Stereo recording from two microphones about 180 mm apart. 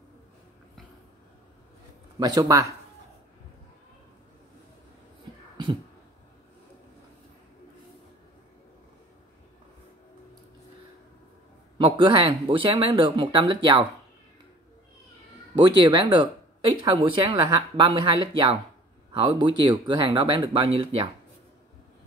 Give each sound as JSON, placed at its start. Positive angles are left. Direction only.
{"t": 2.1, "sound": "speech", "side_deg": -20}
{"t": 11.8, "sound": "speech", "side_deg": -30}
{"t": 15.6, "sound": "speech", "side_deg": -25}